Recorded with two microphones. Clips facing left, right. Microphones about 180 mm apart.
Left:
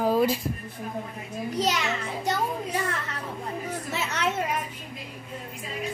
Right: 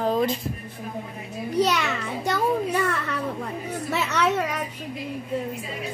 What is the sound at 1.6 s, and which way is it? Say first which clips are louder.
A child's voice: right 5 dB; 65° right (ahead or behind).